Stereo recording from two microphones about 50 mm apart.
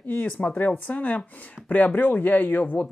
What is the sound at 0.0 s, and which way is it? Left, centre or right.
Speech, left.